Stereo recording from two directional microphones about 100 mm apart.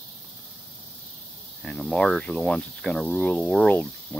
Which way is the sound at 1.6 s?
5° left (ahead or behind).